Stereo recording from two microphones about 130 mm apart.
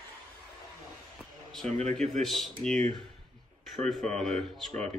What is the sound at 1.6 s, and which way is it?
Speech, 60° right (ahead or behind).